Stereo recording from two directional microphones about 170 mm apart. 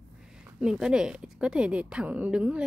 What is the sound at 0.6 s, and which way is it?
Speech, 5° right (ahead or behind).